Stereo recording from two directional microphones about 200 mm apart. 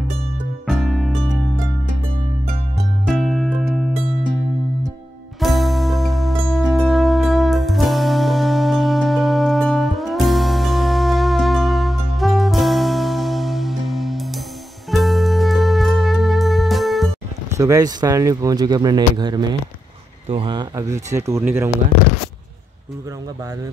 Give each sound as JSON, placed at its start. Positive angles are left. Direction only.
{"t": 0.7, "sound": "music", "side_deg": 0}
{"t": 3.1, "sound": "music", "side_deg": 0}
{"t": 5.4, "sound": "music", "side_deg": 0}
{"t": 17.5, "sound": "speech", "side_deg": -15}